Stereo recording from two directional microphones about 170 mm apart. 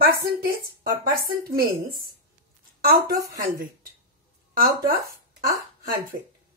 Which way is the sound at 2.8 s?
60° right (ahead or behind).